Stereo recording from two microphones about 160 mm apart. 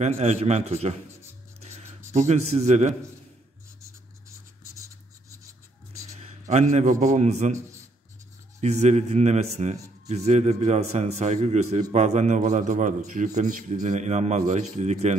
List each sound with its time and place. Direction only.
0.0 s speech: 45° right (ahead or behind)
1.6 s writing: 40° right (ahead or behind)
2.1 s speech: 45° right (ahead or behind)
5.9 s a man's voice: 45° right (ahead or behind)
8.5 s speech: 45° right (ahead or behind)